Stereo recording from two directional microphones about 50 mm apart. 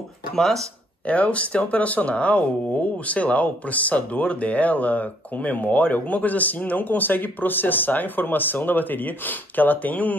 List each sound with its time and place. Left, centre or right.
0.3 s speech: centre
1.0 s speech: left